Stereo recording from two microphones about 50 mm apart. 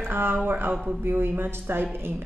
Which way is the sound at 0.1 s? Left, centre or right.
Right.